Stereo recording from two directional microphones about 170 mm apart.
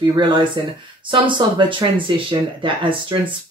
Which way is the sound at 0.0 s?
25° right (ahead or behind).